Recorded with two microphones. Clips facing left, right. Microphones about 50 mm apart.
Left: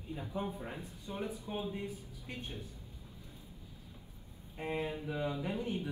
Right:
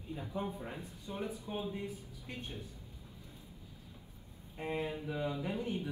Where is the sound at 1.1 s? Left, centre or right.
Left.